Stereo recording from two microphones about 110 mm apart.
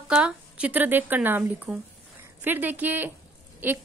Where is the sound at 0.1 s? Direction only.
10° right (ahead or behind).